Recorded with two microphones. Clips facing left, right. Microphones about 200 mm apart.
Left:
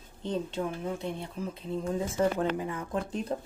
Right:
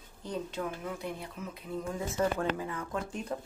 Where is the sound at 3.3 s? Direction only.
30° left (ahead or behind).